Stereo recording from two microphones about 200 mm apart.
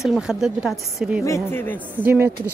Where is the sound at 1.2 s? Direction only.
15° left (ahead or behind).